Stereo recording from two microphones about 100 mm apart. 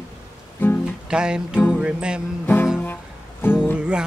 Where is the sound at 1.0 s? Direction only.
10° right (ahead or behind).